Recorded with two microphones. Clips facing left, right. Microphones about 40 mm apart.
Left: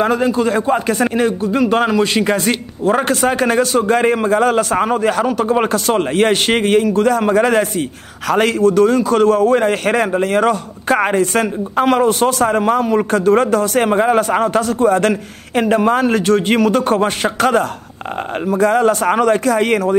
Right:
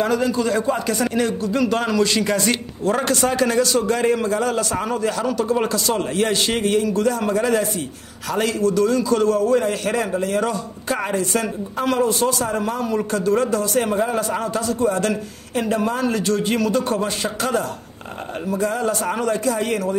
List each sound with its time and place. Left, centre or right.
0.0 s a man's voice: left
8.5 s a man's voice: left